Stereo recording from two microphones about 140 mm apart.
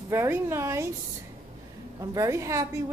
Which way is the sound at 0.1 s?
15° right (ahead or behind).